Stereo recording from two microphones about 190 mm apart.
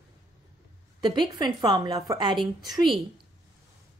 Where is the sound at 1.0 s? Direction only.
25° right (ahead or behind).